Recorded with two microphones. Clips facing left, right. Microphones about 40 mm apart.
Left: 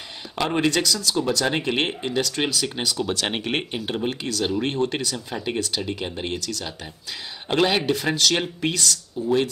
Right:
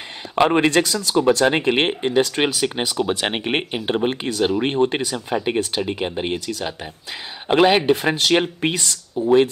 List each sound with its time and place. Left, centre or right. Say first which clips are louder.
0.4 s speech: right 6 dB; right
3.1 s speech: right 4 dB; centre